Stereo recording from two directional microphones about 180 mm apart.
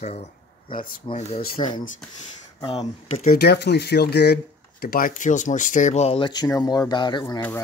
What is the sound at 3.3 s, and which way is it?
Speech, 65° left (ahead or behind).